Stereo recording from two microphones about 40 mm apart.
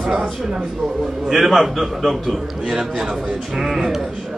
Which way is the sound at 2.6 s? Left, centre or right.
Centre.